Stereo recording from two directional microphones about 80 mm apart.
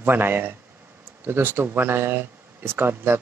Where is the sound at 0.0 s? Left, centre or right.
Right.